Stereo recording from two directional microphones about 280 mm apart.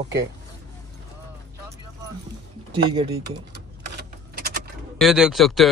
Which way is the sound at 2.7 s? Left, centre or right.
Centre.